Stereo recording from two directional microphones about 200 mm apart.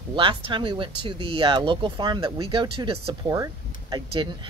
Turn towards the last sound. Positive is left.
turn(degrees=-20)  # may be behind; listen again after turning